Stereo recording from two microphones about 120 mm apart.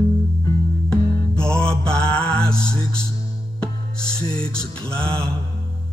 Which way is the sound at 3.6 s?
5° left (ahead or behind).